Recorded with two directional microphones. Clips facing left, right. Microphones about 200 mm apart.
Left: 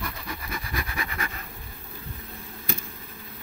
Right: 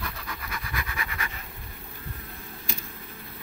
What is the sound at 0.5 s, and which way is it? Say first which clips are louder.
Scratch: left 3 dB; 30° left (ahead or behind).